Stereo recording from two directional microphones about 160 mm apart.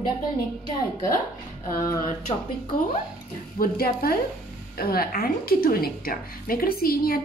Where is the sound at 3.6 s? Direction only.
70° left (ahead or behind).